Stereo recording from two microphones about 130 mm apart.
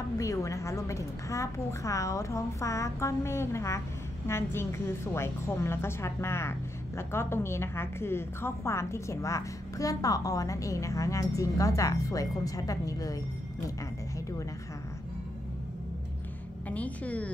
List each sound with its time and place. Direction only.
0.2 s a woman's voice: 25° left (ahead or behind)
16.6 s a woman's voice: 10° left (ahead or behind)